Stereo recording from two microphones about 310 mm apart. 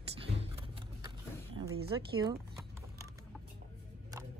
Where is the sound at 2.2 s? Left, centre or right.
Centre.